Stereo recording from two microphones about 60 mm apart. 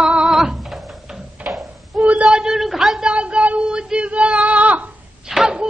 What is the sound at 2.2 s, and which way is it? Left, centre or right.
Speech, centre.